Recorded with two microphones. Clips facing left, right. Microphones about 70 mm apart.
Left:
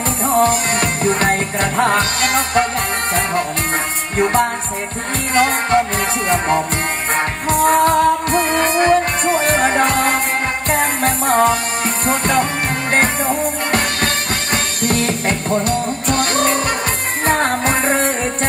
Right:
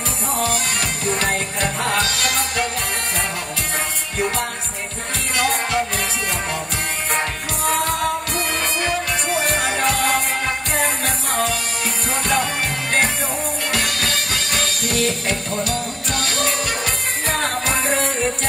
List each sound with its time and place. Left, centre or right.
0.4 s music: left
4.2 s music: left
13.7 s music: left